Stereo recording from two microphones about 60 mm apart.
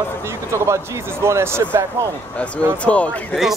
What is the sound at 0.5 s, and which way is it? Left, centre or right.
Speech, right.